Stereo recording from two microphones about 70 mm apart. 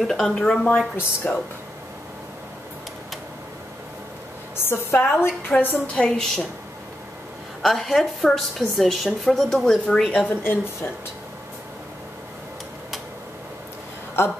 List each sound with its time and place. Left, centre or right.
0.0 s a woman's voice: centre
0.9 s a woman's voice: left
4.6 s a woman's voice: left
5.9 s a woman's voice: centre
7.6 s a woman's voice: centre
10.4 s a woman's voice: left